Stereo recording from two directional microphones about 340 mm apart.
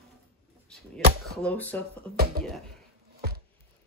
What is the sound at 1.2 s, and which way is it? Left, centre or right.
Speech, centre.